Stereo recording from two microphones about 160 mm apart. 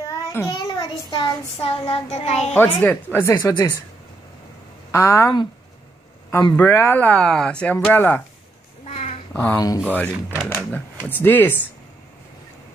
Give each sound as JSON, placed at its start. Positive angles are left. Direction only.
{"t": 0.1, "sound": "child singing", "side_deg": 15}
{"t": 0.7, "sound": "child singing", "side_deg": 30}
{"t": 2.5, "sound": "speech", "side_deg": 10}
{"t": 4.9, "sound": "a woman's voice", "side_deg": 20}
{"t": 6.5, "sound": "speech", "side_deg": 15}
{"t": 8.8, "sound": "a sound", "side_deg": 40}
{"t": 9.3, "sound": "speech", "side_deg": 10}
{"t": 10.3, "sound": "speech", "side_deg": 0}
{"t": 10.7, "sound": "speech", "side_deg": 10}